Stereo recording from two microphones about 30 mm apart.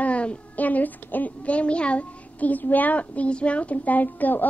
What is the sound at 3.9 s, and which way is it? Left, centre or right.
Speech, left.